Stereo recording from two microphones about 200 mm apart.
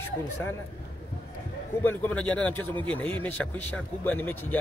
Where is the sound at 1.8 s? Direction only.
5° left (ahead or behind).